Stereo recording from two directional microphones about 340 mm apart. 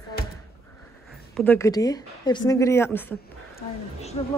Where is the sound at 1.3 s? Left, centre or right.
Centre.